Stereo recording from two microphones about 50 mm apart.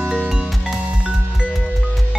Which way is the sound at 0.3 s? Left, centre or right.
Centre.